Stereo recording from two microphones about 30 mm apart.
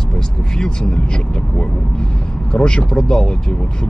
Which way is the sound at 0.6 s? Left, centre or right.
Left.